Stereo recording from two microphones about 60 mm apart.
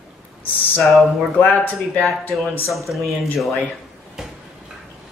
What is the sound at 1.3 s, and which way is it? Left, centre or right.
Speech, left.